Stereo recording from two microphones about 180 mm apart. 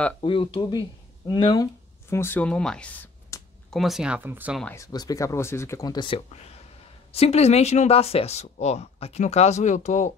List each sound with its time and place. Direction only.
0.2 s speech: 30° left (ahead or behind)
2.0 s speech: 15° left (ahead or behind)
3.7 s speech: centre (ahead or behind)
4.7 s speech: 20° left (ahead or behind); by 10.1 s 40° left (ahead or behind)